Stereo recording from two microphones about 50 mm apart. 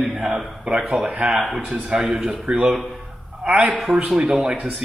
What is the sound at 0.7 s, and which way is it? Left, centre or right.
Speech, right.